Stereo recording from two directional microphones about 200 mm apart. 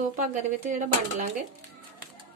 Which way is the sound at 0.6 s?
40° right (ahead or behind).